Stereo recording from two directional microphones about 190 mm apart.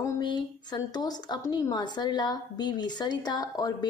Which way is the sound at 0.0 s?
25° left (ahead or behind).